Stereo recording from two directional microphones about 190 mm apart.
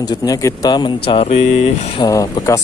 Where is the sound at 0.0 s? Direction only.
20° left (ahead or behind); by 1.7 s 35° left (ahead or behind).